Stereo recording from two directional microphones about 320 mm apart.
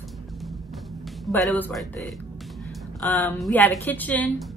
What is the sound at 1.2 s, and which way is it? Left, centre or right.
Speech, centre.